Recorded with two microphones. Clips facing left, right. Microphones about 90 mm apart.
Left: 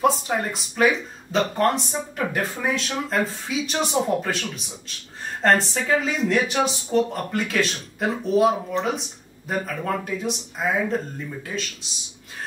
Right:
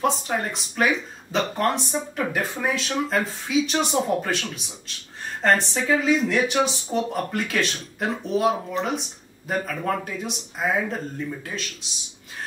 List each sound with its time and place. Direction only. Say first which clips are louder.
0.0 s speech: left 2 dB; centre (ahead or behind)